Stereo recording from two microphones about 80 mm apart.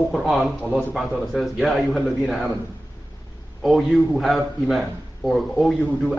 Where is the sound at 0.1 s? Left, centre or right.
Centre.